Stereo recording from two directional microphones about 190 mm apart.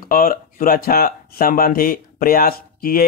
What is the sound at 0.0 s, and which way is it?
Speech, 50° left (ahead or behind).